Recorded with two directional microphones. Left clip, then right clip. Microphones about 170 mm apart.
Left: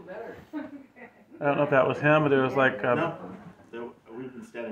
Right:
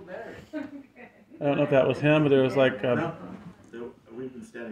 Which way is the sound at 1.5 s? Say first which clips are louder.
Right 1 dB; 30° right (ahead or behind).